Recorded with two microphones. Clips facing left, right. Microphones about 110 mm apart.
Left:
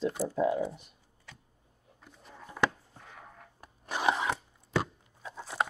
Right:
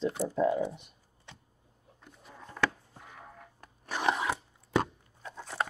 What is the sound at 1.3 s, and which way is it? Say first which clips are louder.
Vehicle: right 1 dB; 25° right (ahead or behind).